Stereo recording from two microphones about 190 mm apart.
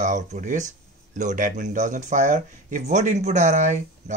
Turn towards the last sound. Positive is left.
turn(degrees=-40)  # may be behind; listen again after turning